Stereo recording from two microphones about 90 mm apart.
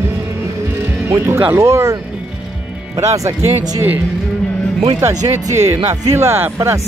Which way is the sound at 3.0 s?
40° right (ahead or behind).